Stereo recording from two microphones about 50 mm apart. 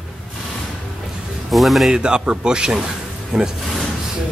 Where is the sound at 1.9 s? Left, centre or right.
Centre.